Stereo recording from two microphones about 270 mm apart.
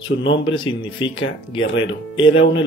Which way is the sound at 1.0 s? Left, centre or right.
Centre.